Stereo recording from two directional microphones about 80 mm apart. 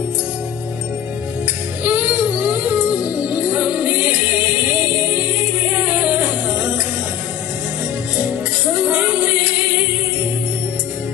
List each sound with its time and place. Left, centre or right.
1.9 s music: centre
6.0 s music: centre